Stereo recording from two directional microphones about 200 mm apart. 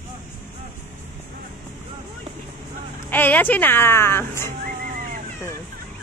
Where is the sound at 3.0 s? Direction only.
10° left (ahead or behind).